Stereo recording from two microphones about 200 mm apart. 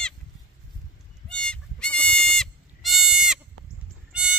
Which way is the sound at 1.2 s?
5° left (ahead or behind).